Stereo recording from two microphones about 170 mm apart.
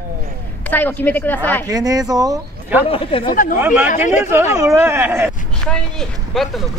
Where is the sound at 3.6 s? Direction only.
10° right (ahead or behind).